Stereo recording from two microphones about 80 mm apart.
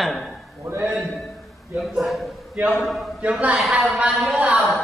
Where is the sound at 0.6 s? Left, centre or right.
Right.